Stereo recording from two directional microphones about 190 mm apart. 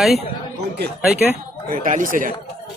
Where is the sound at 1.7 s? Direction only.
45° right (ahead or behind).